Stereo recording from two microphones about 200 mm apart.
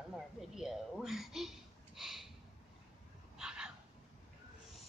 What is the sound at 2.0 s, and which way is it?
Snort, centre (ahead or behind).